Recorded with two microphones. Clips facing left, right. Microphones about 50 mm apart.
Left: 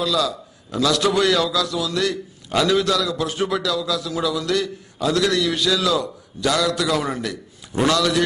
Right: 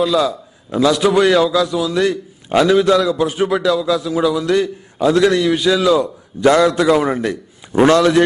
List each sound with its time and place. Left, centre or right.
0.0 s a man's voice: right
3.6 s a man's voice: right